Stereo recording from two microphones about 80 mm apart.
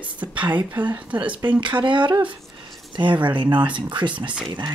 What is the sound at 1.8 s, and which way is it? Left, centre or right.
Speech, right.